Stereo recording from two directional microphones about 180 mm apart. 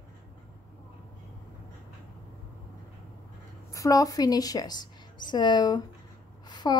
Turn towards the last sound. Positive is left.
turn(degrees=25)  # may be behind; listen again after turning